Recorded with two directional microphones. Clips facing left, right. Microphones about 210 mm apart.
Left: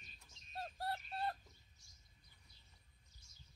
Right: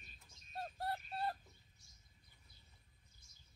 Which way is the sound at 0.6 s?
Centre (ahead or behind).